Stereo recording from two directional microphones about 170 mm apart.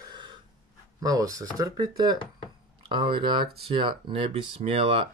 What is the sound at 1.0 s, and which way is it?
Speech, 20° right (ahead or behind).